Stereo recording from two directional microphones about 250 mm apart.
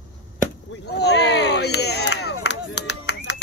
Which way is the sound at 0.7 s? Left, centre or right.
Left.